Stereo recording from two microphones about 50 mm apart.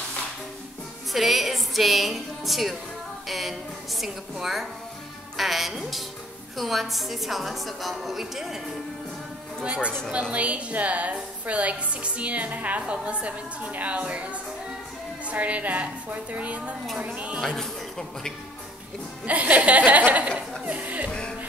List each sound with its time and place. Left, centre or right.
1.1 s a woman's voice: centre
9.6 s a woman's voice: right
17.4 s speech: centre
19.2 s a woman's voice: right
20.1 s a sound: right
20.6 s music: right